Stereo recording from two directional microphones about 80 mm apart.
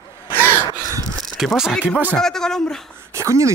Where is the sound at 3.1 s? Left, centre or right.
Right.